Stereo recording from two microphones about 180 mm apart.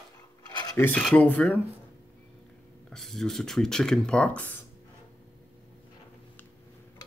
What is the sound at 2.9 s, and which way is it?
Speech, centre (ahead or behind).